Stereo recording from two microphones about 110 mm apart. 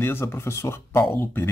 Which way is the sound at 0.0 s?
20° left (ahead or behind).